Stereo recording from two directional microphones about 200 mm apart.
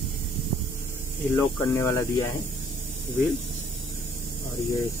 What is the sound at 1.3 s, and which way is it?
Speech, 15° left (ahead or behind).